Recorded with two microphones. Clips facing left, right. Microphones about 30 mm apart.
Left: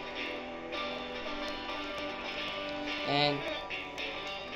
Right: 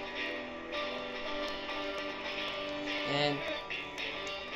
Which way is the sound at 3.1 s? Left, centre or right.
Left.